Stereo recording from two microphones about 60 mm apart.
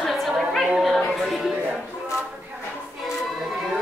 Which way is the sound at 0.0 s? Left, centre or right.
Centre.